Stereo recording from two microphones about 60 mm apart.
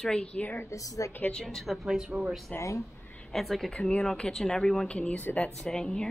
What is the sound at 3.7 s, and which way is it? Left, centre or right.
Speech, centre.